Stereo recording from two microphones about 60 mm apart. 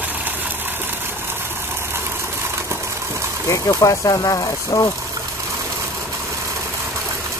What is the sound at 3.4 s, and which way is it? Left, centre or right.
Speech, left.